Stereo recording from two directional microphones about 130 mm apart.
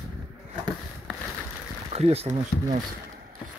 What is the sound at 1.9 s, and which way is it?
Speech, 50° right (ahead or behind).